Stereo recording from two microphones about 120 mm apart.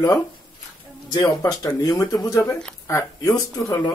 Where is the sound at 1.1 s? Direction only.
35° left (ahead or behind).